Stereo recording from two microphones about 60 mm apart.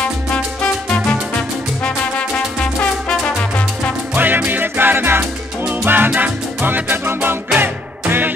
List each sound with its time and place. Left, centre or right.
2.8 s music: centre
4.1 s music: right